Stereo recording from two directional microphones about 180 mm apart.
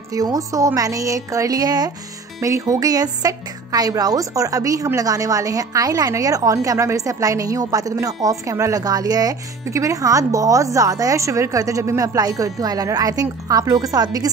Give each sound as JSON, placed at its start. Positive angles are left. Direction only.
{"t": 0.1, "sound": "a woman's voice", "side_deg": -20}